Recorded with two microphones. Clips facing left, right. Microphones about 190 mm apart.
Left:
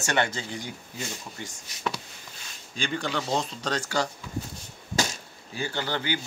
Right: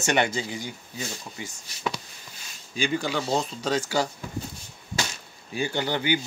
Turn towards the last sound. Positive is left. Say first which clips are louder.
# right 4 dB
turn(degrees=-15)  # may be behind; listen again after turning